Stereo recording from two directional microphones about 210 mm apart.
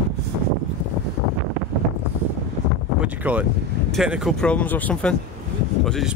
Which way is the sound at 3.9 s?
Centre (ahead or behind).